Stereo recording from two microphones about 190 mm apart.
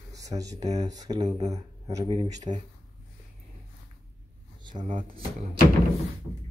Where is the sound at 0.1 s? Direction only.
20° right (ahead or behind).